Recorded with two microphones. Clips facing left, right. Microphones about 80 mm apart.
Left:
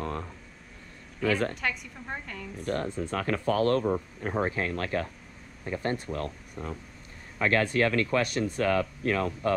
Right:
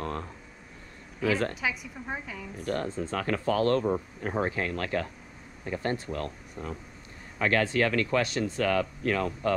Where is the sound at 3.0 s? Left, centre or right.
Left.